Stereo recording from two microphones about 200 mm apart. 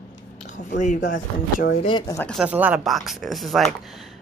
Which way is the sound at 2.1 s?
5° left (ahead or behind).